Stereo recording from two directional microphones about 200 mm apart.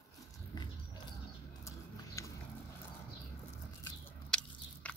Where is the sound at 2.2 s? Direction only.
15° left (ahead or behind).